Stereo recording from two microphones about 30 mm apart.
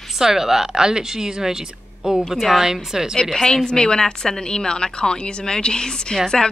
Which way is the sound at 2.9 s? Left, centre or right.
Centre.